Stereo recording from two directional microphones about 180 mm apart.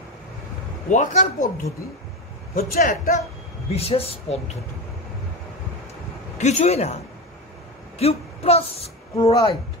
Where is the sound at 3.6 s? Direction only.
35° left (ahead or behind).